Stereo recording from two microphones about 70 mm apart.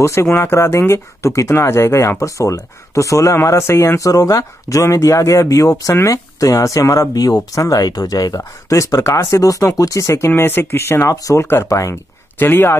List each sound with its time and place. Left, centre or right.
0.0 s speech: left
4.0 s speech: left
12.4 s speech: left